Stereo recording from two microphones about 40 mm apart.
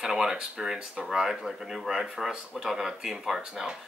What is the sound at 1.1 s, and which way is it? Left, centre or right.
Speech, centre.